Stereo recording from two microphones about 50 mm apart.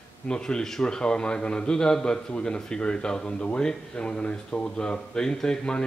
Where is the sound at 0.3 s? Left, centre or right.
Centre.